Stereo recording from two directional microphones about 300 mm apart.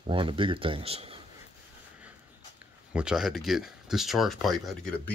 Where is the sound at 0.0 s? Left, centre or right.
Centre.